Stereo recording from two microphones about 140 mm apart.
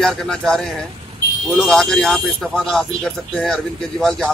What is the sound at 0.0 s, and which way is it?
Speech, centre (ahead or behind).